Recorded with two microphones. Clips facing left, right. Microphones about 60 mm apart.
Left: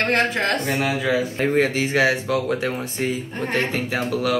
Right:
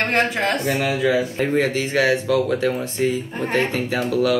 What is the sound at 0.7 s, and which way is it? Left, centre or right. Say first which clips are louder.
Speech: right 2 dB; centre.